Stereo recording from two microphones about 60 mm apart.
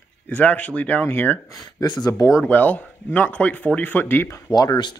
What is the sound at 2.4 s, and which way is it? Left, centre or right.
Speech, left.